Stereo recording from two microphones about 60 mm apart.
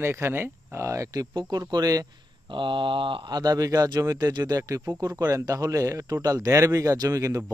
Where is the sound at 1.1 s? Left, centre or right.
Right.